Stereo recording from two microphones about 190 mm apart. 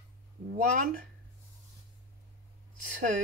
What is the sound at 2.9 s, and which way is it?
Speech, 45° right (ahead or behind).